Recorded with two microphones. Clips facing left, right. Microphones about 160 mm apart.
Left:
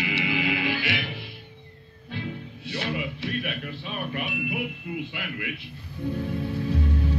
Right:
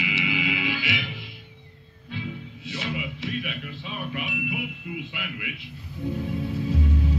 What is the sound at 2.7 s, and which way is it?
Speech, 60° left (ahead or behind).